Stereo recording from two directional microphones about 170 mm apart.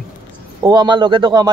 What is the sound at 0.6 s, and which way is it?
Speech, 25° right (ahead or behind).